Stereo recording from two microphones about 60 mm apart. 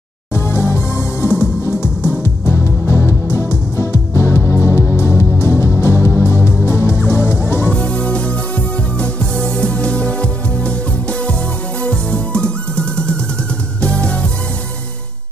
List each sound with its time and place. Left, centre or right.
0.3 s music: left
7.7 s music: centre